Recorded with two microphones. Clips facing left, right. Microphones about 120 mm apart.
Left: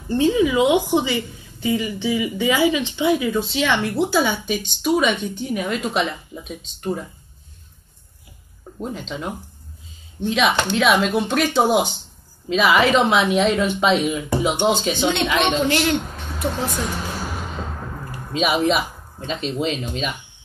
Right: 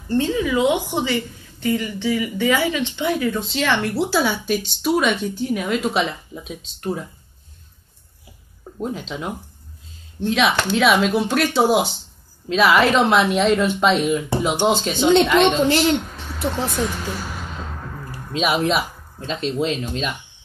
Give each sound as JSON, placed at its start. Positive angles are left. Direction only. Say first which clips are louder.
{"t": 0.1, "sound": "a woman's voice", "louder": "left 2 dB", "side_deg": 15}
{"t": 8.7, "sound": "a woman's voice", "louder": "right 2 dB", "side_deg": -5}
{"t": 15.7, "sound": "a woman's voice", "louder": "right 2 dB", "side_deg": -25}
{"t": 18.3, "sound": "a woman's voice", "louder": "left 1 dB", "side_deg": 0}